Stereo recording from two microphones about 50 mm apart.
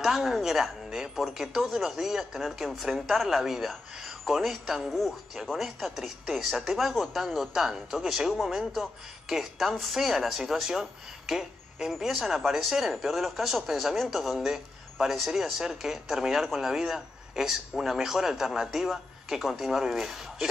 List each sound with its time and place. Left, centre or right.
0.0 s speech: centre